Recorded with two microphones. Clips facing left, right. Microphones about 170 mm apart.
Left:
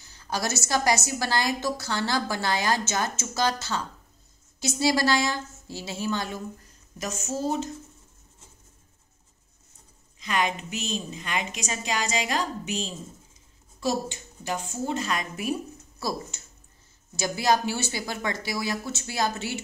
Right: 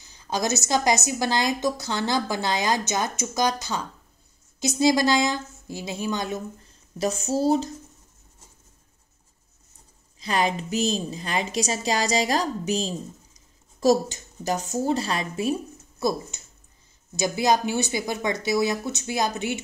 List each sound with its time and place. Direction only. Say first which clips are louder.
0.0 s a woman's voice: right 3 dB; 20° right (ahead or behind)
7.0 s a woman's voice: right 6 dB; 35° right (ahead or behind)
10.2 s a woman's voice: right 3 dB; 35° right (ahead or behind); by 19.6 s 20° right (ahead or behind)